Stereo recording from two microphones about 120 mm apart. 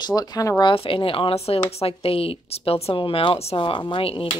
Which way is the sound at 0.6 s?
50° left (ahead or behind).